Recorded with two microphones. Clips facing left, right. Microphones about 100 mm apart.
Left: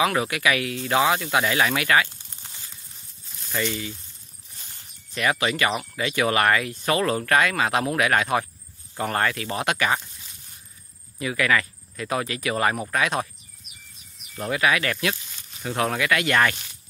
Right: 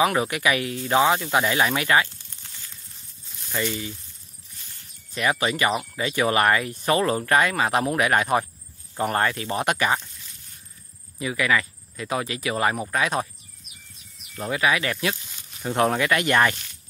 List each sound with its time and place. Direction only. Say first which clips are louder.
0.2 s speech: even; 25° right (ahead or behind)
2.4 s a sound: left 2 dB; 20° left (ahead or behind)
3.5 s speech: even; 10° right (ahead or behind)
5.1 s speech: even; 15° right (ahead or behind)
11.1 s speech: even; 20° right (ahead or behind)
14.8 s speech: even; 20° right (ahead or behind)
15.7 s speech: right 2 dB; 30° right (ahead or behind)